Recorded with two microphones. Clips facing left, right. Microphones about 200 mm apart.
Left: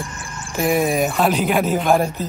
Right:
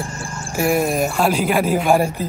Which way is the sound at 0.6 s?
Centre (ahead or behind).